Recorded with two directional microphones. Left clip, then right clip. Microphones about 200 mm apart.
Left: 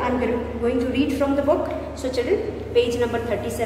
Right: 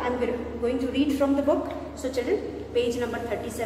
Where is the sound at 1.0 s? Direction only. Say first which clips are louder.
Left 3 dB; 20° right (ahead or behind).